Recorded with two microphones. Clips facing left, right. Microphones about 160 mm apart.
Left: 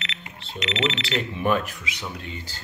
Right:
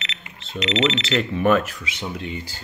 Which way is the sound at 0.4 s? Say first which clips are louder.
Right 5 dB; 90° right.